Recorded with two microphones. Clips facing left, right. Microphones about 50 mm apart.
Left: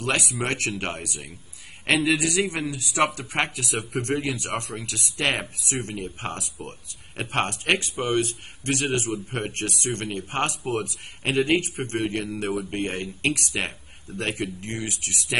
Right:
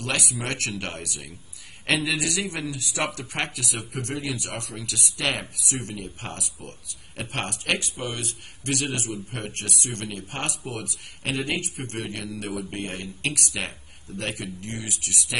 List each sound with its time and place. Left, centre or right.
0.0 s a man's voice: left